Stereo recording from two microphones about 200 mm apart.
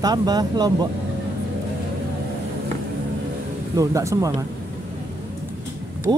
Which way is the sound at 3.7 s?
15° right (ahead or behind).